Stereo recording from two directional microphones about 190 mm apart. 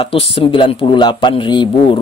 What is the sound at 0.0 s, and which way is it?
Speech, 30° left (ahead or behind).